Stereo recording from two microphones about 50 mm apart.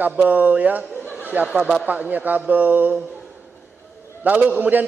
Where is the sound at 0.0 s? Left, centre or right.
Right.